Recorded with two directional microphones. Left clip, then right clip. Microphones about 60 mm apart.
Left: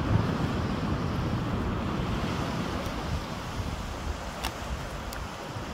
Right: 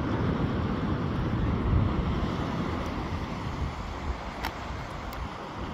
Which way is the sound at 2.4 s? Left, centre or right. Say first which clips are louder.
Even; left.